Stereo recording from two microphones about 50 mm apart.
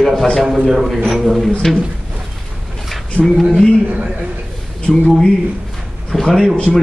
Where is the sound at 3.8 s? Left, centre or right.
Right.